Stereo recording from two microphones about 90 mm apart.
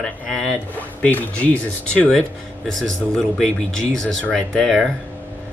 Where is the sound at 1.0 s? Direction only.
15° left (ahead or behind).